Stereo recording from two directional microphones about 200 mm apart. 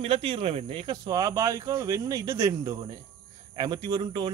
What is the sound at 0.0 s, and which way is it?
Speech, 25° right (ahead or behind).